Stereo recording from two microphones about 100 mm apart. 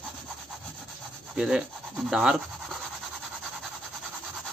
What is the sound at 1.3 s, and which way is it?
Speech, 5° right (ahead or behind).